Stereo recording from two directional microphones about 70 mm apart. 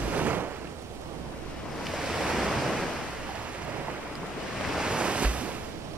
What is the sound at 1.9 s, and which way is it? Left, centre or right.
Waves, centre.